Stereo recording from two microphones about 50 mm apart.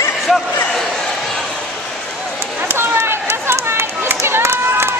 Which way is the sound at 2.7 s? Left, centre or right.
Right.